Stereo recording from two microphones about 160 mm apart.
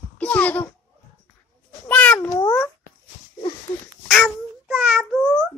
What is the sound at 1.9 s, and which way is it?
Cat, 10° left (ahead or behind).